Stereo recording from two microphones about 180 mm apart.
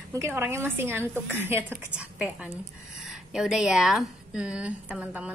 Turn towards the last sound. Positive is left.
turn(degrees=-5)  # may be behind; listen again after turning